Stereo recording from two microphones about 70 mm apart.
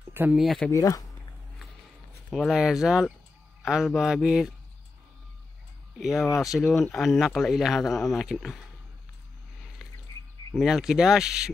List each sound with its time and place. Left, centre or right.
0.2 s speech: right
0.7 s speech: left
2.5 s speech: centre
5.9 s speech: centre
10.5 s speech: centre